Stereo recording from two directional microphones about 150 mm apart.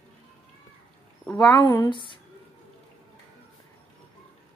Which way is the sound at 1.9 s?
35° left (ahead or behind).